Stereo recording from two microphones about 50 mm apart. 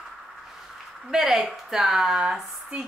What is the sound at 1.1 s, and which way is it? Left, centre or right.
Speech, centre.